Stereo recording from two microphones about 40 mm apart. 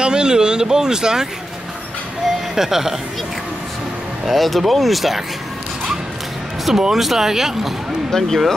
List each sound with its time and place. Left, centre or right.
0.0 s speech: right
2.5 s speech: centre
4.3 s speech: centre
6.6 s speech: centre
8.1 s speech: centre